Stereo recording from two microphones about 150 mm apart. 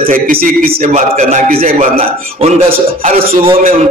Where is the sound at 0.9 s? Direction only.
55° right (ahead or behind).